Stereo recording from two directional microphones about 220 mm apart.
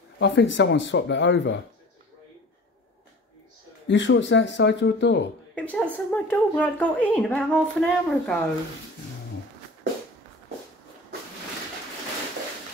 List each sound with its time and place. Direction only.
0.2 s speech: 55° left (ahead or behind)
3.8 s speech: 55° left (ahead or behind)
5.5 s a woman's voice: 5° left (ahead or behind)